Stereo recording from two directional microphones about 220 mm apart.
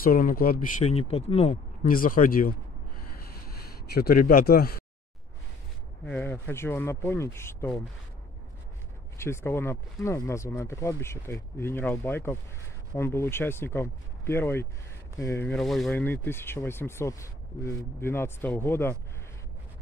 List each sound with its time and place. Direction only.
0.0 s speech: 40° left (ahead or behind)
0.8 s speech: 25° left (ahead or behind)
3.9 s speech: 45° left (ahead or behind)
6.0 s speech: 5° left (ahead or behind)
9.2 s speech: 10° left (ahead or behind)